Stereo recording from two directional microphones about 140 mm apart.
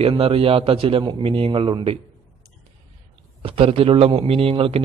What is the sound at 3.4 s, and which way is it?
A man's voice, 40° right (ahead or behind).